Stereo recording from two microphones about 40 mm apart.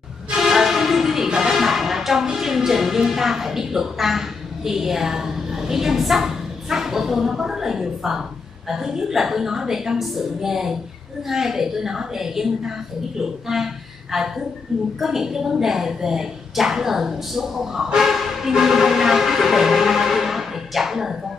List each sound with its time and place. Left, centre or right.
0.4 s music: centre
1.4 s speech: centre
17.9 s music: centre